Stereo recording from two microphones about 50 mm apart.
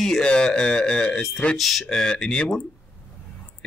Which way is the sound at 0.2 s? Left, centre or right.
Centre.